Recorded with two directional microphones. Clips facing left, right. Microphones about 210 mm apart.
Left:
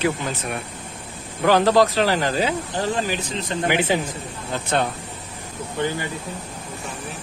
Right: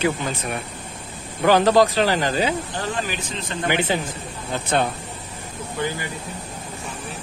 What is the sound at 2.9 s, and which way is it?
Speech, 40° left (ahead or behind).